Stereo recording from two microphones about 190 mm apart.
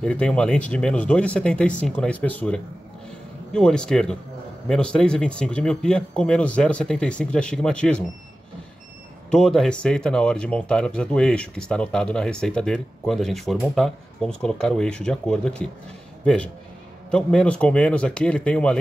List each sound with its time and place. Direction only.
0.0 s speech: 5° left (ahead or behind)
9.3 s speech: centre (ahead or behind)
17.1 s speech: 5° left (ahead or behind)